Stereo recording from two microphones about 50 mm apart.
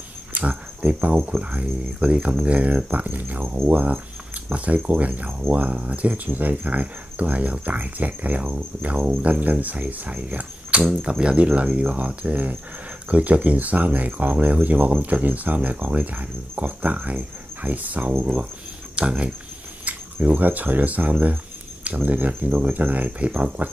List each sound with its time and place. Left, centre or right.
0.3 s cricket: right
1.4 s speech: right
3.4 s speech: right
4.5 s speech: right
20.2 s speech: right